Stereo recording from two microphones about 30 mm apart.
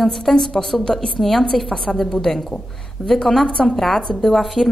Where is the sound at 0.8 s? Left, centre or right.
Left.